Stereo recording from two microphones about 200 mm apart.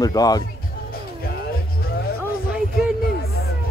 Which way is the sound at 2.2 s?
5° right (ahead or behind).